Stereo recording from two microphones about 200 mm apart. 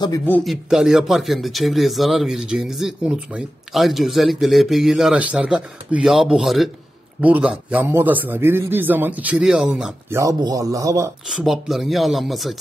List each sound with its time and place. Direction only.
0.0 s speech: 15° left (ahead or behind)
0.4 s a man's voice: centre (ahead or behind)
10.1 s a man's voice: 15° right (ahead or behind)
11.2 s speech: centre (ahead or behind)